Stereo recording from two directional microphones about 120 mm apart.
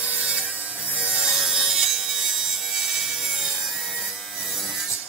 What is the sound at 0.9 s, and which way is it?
Wood, 10° right (ahead or behind).